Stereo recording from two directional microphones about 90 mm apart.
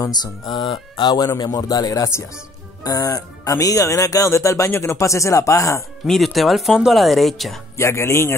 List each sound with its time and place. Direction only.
0.0 s speech: 50° left (ahead or behind); by 5.9 s 35° left (ahead or behind)
6.0 s speech: centre (ahead or behind)
7.7 s speech: 30° left (ahead or behind)